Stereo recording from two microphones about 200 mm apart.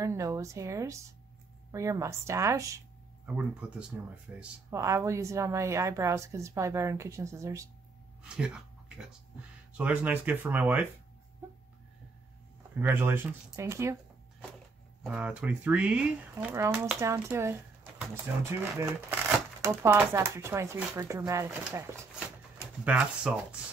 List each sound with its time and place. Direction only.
0.0 s a woman's voice: 15° right (ahead or behind)
3.6 s a woman's voice: 5° right (ahead or behind)
8.2 s a sound: 5° right (ahead or behind)
9.8 s a woman's voice: 5° right (ahead or behind)
11.4 s a sound: 10° right (ahead or behind)
12.7 s a woman's voice: 10° right (ahead or behind)
15.0 s a woman's voice: 5° right (ahead or behind)